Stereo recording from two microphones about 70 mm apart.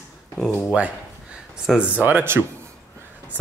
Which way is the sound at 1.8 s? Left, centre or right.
Right.